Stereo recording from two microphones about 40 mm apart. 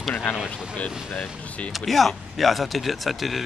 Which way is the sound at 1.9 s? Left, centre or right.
Centre.